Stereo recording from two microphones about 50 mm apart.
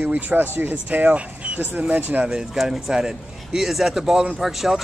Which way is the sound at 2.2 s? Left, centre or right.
Centre.